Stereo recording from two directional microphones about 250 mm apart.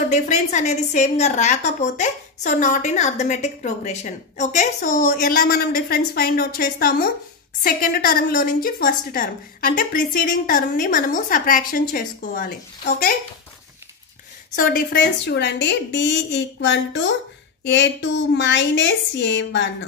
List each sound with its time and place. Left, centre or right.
0.1 s a woman's voice: left
14.5 s a woman's voice: left